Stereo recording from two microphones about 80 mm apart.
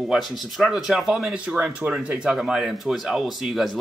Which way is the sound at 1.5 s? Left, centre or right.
Centre.